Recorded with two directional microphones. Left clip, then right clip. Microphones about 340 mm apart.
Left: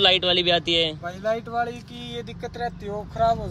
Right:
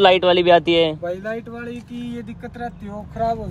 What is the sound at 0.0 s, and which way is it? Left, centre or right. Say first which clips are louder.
Speech: right 5 dB; centre.